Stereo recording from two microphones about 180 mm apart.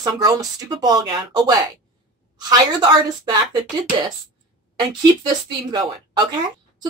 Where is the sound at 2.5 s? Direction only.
25° right (ahead or behind).